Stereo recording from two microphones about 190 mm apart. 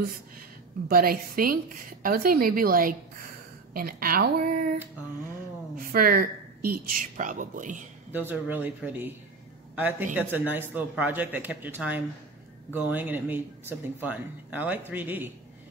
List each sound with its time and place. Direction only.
0.0 s a woman's voice: 50° right (ahead or behind)
5.9 s a woman's voice: 50° right (ahead or behind)
8.1 s speech: 10° right (ahead or behind)